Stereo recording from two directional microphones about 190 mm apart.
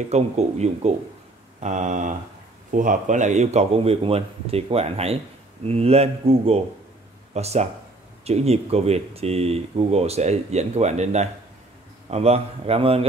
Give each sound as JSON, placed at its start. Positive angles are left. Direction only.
{"t": 0.1, "sound": "speech", "side_deg": -35}